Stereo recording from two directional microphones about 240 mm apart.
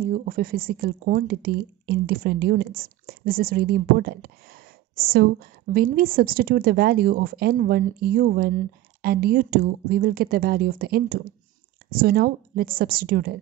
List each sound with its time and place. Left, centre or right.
0.0 s speech: right